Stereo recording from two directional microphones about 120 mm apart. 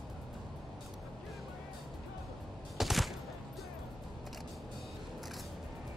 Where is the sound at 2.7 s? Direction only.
Centre (ahead or behind).